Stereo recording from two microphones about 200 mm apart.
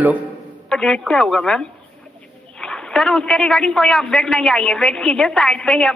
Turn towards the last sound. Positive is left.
turn(degrees=5)  # may be behind; listen again after turning